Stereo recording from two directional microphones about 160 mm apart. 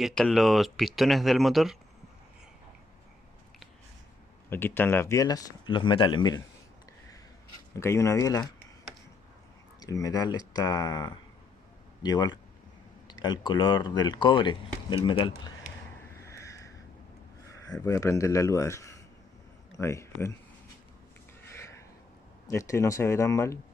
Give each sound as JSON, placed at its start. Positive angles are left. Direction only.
{"t": 0.0, "sound": "speech", "side_deg": 0}
{"t": 4.5, "sound": "speech", "side_deg": 15}
{"t": 7.7, "sound": "speech", "side_deg": 20}
{"t": 9.8, "sound": "speech", "side_deg": 20}
{"t": 16.3, "sound": "a sound", "side_deg": 20}
{"t": 17.5, "sound": "speech", "side_deg": 20}
{"t": 22.5, "sound": "speech", "side_deg": 20}